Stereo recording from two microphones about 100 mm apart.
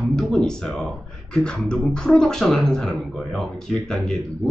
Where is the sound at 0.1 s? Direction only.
5° left (ahead or behind).